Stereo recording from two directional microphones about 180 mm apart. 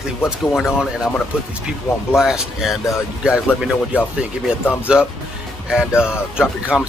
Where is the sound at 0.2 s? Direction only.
Centre (ahead or behind).